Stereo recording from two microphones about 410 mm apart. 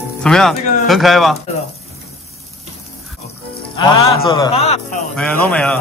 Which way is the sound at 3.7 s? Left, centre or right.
Centre.